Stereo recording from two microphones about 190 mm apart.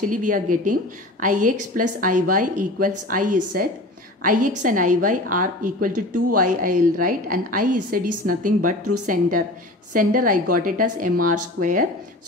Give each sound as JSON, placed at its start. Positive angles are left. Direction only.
{"t": 0.1, "sound": "a woman's voice", "side_deg": -40}